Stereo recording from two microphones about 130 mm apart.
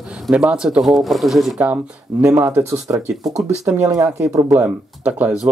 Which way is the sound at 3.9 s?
25° right (ahead or behind).